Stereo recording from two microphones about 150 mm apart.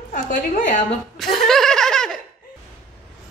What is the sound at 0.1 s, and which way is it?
Speech, 55° left (ahead or behind).